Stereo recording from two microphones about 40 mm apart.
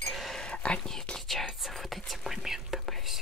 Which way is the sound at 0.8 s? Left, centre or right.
Centre.